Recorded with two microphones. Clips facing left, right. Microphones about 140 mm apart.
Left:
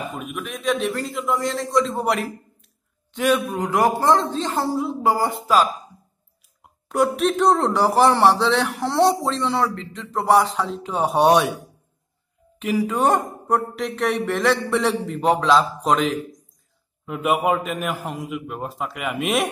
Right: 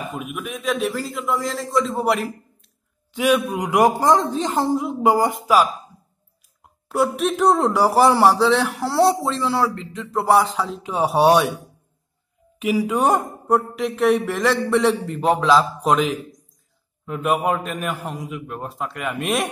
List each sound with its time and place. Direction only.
0.1 s a man's voice: 5° right (ahead or behind)
6.9 s a man's voice: centre (ahead or behind)
12.5 s a woman's voice: 10° right (ahead or behind)